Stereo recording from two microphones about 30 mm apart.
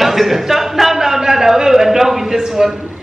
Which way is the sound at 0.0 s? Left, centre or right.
Centre.